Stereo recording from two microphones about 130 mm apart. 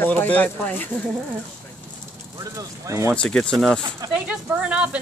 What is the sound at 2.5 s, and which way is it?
Speech, 25° right (ahead or behind).